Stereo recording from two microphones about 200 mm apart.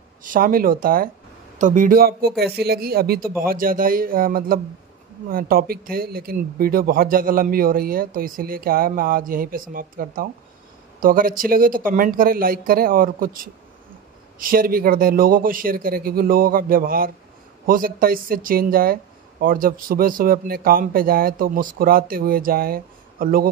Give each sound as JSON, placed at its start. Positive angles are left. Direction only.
{"t": 0.2, "sound": "speech", "side_deg": -45}
{"t": 14.4, "sound": "speech", "side_deg": -45}